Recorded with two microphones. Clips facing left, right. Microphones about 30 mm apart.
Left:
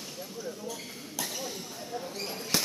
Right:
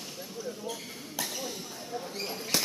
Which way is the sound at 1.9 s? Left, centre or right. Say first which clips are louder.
Right 1 dB; centre.